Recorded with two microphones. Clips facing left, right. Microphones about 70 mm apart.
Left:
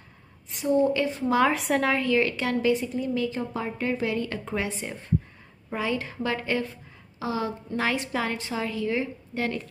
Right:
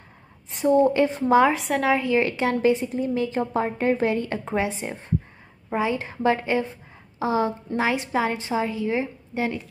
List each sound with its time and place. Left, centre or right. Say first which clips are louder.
0.5 s a woman's voice: right 4 dB; right
1.5 s a woman's voice: right 2 dB; centre
2.0 s a woman's voice: right 2 dB; right
7.7 s a woman's voice: right 3 dB; centre